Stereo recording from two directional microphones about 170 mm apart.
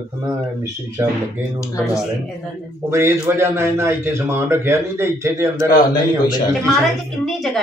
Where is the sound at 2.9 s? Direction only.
15° right (ahead or behind).